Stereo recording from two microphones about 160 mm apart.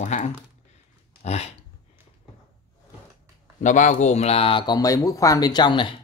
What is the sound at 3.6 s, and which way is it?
Speech, 50° left (ahead or behind).